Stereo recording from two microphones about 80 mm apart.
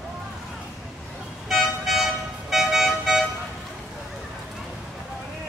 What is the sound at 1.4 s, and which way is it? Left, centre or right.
Vehicle, centre.